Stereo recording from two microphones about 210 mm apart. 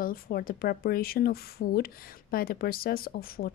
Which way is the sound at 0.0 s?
45° left (ahead or behind).